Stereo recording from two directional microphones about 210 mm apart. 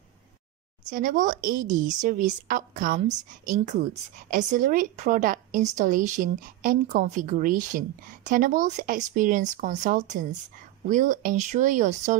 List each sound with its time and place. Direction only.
0.8 s a woman's voice: 40° right (ahead or behind)
4.3 s a woman's voice: 35° right (ahead or behind)